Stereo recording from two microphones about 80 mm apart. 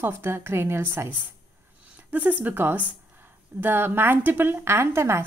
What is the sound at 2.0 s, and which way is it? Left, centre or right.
A woman's voice, centre.